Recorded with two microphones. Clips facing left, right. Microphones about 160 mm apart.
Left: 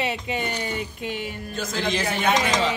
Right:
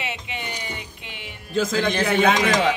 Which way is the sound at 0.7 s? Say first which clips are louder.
Left 9 dB; 45° left (ahead or behind).